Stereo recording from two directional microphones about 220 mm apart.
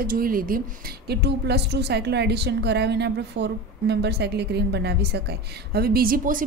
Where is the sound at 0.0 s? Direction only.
40° right (ahead or behind).